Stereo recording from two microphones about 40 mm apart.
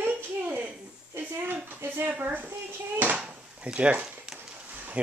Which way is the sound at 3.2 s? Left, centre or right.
Right.